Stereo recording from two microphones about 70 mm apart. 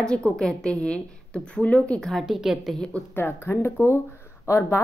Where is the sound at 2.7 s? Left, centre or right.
Centre.